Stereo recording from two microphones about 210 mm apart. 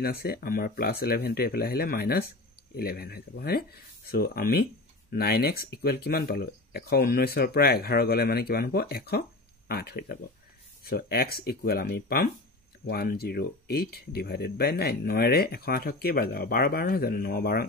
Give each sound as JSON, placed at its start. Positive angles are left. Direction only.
{"t": 0.0, "sound": "speech", "side_deg": 50}